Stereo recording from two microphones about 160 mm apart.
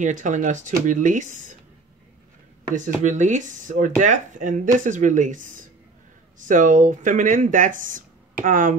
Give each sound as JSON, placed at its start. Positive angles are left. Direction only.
{"t": 0.0, "sound": "speech", "side_deg": -50}
{"t": 3.0, "sound": "speech", "side_deg": -50}